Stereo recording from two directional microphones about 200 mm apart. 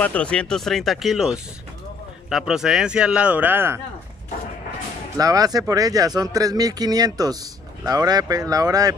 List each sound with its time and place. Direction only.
0.0 s speech: 5° left (ahead or behind); by 3.8 s 10° right (ahead or behind)
5.1 s speech: 20° right (ahead or behind)